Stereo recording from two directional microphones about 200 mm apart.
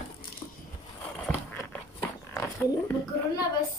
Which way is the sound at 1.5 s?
10° left (ahead or behind).